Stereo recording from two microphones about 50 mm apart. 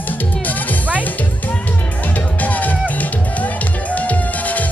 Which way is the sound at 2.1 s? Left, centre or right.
Left.